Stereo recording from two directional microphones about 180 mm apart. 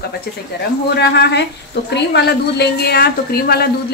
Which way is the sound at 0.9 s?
70° left (ahead or behind).